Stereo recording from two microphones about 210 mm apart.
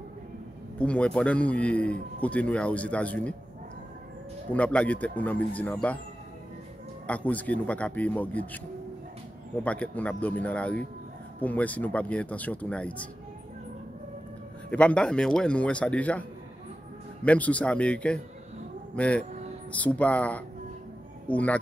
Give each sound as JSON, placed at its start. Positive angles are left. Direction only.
{"t": 0.7, "sound": "a man's voice", "side_deg": 5}
{"t": 4.6, "sound": "a man's voice", "side_deg": 5}
{"t": 7.1, "sound": "a man's voice", "side_deg": 5}
{"t": 9.6, "sound": "a man's voice", "side_deg": 5}
{"t": 14.7, "sound": "a man's voice", "side_deg": 5}